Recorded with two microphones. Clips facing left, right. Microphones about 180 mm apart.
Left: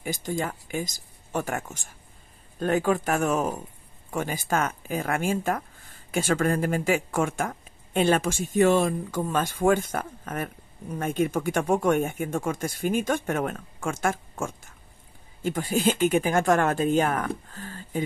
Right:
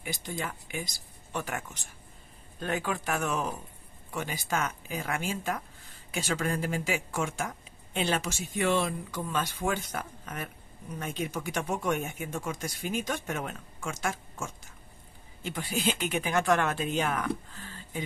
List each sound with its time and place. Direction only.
0.0 s speech: 40° left (ahead or behind)